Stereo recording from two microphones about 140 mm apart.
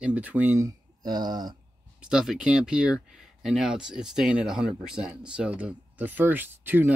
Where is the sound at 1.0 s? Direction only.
30° right (ahead or behind).